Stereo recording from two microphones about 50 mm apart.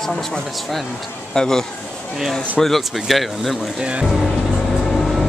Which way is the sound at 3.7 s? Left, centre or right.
Right.